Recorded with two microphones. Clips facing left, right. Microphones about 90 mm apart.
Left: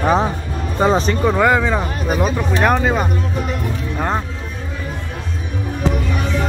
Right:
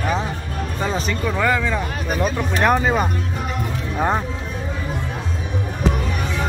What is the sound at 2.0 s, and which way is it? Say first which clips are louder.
Speech: left 3 dB; 5° left (ahead or behind).